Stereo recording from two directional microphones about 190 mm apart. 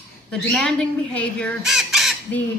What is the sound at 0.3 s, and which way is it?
A child's voice, 5° left (ahead or behind).